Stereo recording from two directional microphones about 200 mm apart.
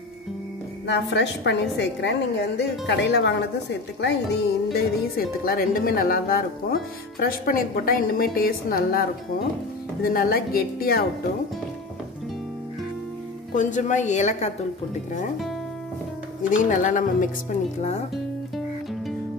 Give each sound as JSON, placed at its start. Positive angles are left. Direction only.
{"t": 0.8, "sound": "a woman's voice", "side_deg": 60}
{"t": 10.0, "sound": "speech", "side_deg": 50}
{"t": 13.6, "sound": "a woman's voice", "side_deg": 40}
{"t": 16.4, "sound": "a woman's voice", "side_deg": 40}